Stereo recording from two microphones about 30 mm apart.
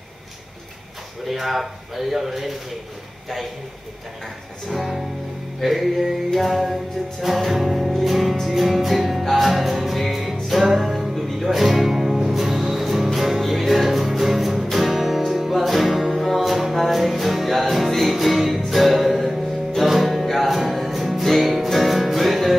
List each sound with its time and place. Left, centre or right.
1.3 s speech: centre
4.6 s speech: centre
5.6 s music: centre